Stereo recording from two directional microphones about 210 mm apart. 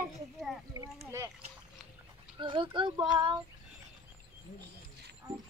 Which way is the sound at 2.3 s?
25° right (ahead or behind).